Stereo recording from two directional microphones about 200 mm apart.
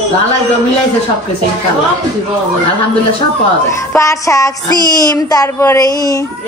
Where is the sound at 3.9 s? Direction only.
15° left (ahead or behind).